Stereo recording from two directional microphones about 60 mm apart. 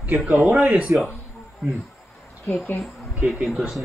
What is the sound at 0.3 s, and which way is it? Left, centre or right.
Speech, right.